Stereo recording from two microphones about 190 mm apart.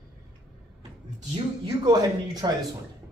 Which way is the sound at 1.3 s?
20° right (ahead or behind).